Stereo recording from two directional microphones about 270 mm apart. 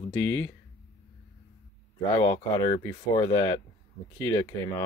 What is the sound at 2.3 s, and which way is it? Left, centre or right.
Speech, centre.